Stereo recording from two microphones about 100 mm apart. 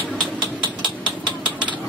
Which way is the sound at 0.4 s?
50° right (ahead or behind).